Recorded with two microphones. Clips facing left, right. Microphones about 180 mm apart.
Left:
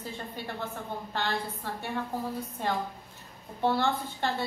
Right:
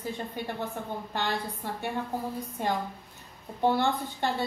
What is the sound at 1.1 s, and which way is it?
Speech, 15° right (ahead or behind).